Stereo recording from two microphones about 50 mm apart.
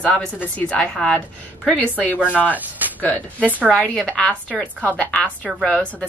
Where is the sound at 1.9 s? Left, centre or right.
Left.